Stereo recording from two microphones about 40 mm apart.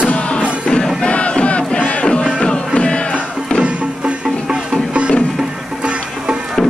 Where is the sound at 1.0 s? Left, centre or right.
Left.